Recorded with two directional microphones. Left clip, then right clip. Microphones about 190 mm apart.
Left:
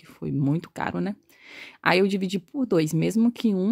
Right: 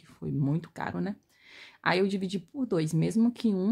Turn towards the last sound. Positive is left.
turn(degrees=30)  # may be behind; listen again after turning